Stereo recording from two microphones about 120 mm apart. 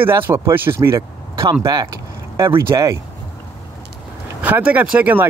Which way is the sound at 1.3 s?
45° right (ahead or behind).